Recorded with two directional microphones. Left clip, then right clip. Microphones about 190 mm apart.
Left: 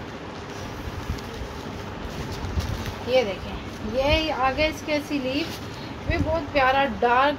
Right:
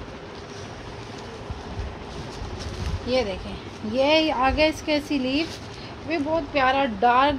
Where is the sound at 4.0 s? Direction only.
55° right (ahead or behind).